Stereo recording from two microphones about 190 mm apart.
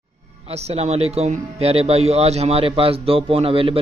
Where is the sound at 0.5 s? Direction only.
35° right (ahead or behind).